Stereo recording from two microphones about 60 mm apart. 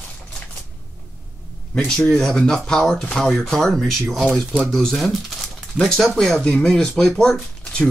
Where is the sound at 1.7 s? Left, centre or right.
Centre.